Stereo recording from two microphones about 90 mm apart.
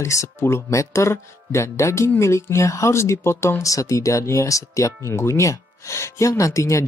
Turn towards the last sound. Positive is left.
turn(degrees=35)  # may be behind; listen again after turning